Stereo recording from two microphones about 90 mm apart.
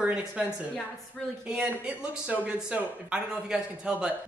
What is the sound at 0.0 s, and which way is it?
Speech, 10° right (ahead or behind).